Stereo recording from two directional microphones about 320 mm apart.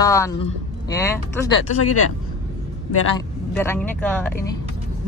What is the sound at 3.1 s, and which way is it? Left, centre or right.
Speech, centre.